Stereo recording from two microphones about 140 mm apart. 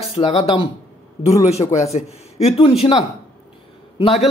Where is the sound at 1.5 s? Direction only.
50° left (ahead or behind).